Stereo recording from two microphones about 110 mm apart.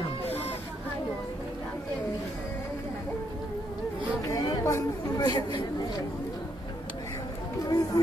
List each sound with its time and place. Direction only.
0.3 s hubbub: 20° left (ahead or behind)
4.3 s chatter: 35° left (ahead or behind)
7.6 s run: 35° left (ahead or behind)